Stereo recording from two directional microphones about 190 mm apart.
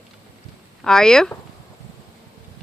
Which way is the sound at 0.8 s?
5° left (ahead or behind).